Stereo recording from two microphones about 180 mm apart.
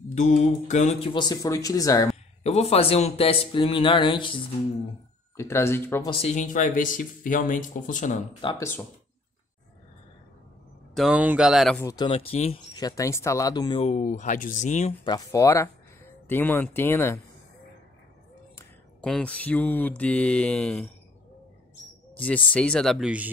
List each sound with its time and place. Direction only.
0.1 s speech: 40° left (ahead or behind)
1.1 s speech: 20° left (ahead or behind)
2.4 s speech: 35° left (ahead or behind)
5.3 s speech: 15° left (ahead or behind)
6.0 s speech: 35° left (ahead or behind)
8.5 s mantra: 15° left (ahead or behind)
11.0 s speech: 5° right (ahead or behind)
11.8 s speech: 20° left (ahead or behind)
12.7 s speech: 20° left (ahead or behind)
13.7 s speech: 40° left (ahead or behind)
15.0 s mantra: 20° left (ahead or behind)
18.9 s mantra: 5° left (ahead or behind)
22.1 s speech: 10° left (ahead or behind)